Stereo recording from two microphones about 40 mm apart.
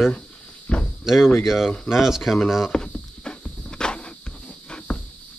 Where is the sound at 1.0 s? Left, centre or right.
Centre.